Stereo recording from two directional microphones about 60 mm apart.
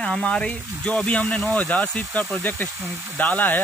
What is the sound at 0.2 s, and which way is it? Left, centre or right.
Speech, centre.